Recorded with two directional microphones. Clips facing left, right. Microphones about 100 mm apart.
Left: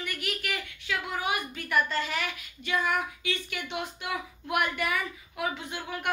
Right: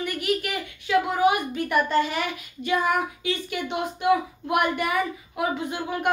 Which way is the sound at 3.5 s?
40° right (ahead or behind).